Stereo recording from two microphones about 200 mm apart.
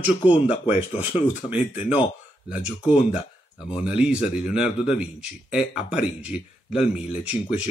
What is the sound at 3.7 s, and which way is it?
Speech, 5° right (ahead or behind).